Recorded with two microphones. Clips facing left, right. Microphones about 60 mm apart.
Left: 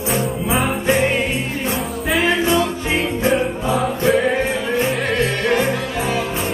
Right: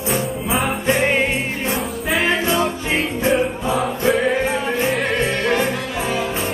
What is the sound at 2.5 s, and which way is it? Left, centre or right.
Music, right.